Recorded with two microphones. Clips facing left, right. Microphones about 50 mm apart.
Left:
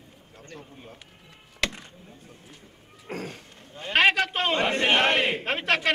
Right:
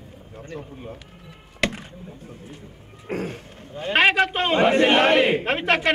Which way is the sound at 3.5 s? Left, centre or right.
Centre.